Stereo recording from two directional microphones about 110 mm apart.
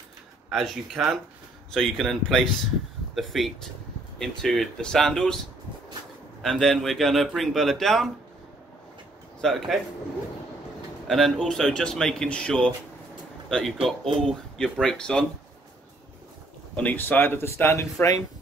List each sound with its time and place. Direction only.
0.5 s a man's voice: centre (ahead or behind)
6.4 s a man's voice: 5° left (ahead or behind)
9.4 s a man's voice: 5° left (ahead or behind)
11.1 s a man's voice: centre (ahead or behind)
16.7 s speech: 15° left (ahead or behind)